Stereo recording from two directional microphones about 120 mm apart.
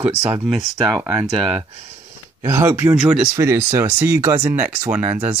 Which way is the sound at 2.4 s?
25° right (ahead or behind).